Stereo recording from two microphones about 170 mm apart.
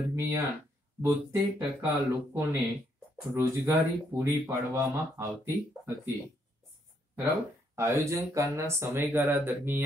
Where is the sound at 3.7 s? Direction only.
15° right (ahead or behind).